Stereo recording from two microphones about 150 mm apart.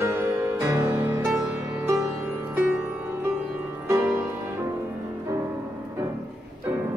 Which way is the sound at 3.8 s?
20° right (ahead or behind).